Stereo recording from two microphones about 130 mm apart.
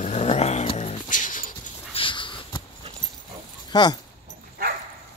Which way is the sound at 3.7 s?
35° left (ahead or behind).